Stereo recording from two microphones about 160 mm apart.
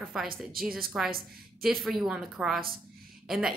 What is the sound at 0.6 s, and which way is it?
Speech, 65° right (ahead or behind).